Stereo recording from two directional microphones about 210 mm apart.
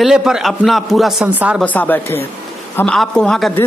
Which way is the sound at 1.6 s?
10° left (ahead or behind).